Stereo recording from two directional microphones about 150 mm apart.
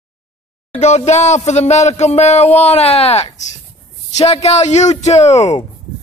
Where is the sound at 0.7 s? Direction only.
50° left (ahead or behind).